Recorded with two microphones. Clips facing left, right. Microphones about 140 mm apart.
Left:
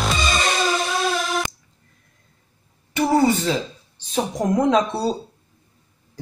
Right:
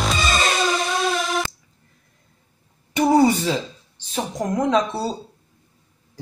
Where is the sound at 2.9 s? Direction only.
15° right (ahead or behind).